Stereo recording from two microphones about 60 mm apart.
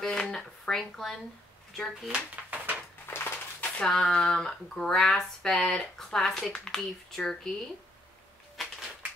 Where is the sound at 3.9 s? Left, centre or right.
Centre.